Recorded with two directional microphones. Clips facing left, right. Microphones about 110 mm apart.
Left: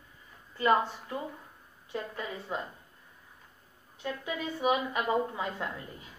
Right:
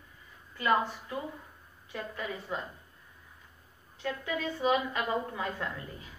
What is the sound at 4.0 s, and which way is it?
A woman's voice, 15° left (ahead or behind).